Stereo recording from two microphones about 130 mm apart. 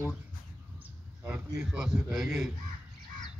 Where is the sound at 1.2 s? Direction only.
10° right (ahead or behind).